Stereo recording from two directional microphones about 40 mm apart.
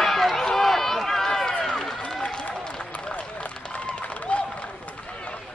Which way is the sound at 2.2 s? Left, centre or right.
Left.